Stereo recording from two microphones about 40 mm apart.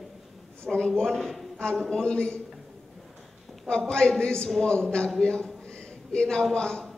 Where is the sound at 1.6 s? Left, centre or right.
Left.